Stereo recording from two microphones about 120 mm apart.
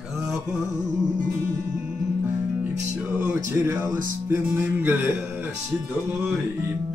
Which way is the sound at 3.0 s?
15° right (ahead or behind).